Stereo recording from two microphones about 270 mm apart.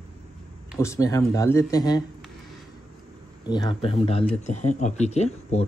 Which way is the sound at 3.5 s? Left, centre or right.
Centre.